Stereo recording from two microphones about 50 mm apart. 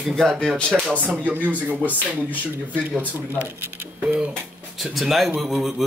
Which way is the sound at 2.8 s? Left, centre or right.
Right.